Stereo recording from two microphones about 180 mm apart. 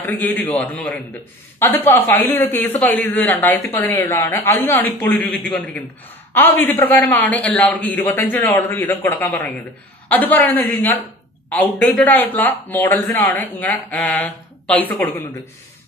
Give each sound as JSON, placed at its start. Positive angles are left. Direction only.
{"t": 0.0, "sound": "speech", "side_deg": 10}